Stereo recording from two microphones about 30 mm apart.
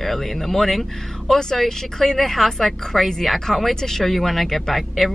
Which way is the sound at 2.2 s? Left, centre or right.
Centre.